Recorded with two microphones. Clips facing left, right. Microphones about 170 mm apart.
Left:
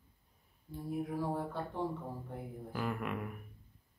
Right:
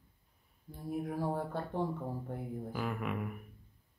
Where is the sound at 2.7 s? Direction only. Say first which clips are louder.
Left 1 dB; centre (ahead or behind).